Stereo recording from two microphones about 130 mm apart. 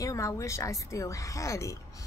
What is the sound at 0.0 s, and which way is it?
Speech, 25° left (ahead or behind).